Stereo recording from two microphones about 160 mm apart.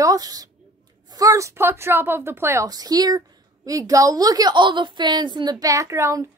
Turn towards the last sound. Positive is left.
turn(degrees=-15)  # may be behind; listen again after turning